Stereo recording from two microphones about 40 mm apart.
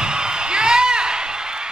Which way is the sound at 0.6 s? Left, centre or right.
Centre.